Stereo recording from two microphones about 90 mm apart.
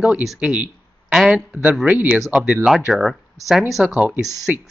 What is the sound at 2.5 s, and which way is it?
Speech, 10° right (ahead or behind).